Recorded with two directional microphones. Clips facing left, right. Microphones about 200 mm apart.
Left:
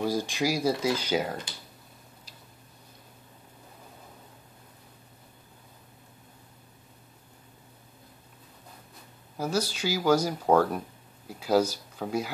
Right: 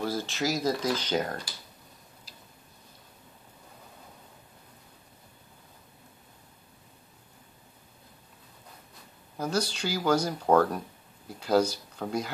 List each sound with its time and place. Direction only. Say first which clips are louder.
0.0 s speech: left 3 dB; 15° left (ahead or behind)
9.4 s speech: left 1 dB; 5° left (ahead or behind)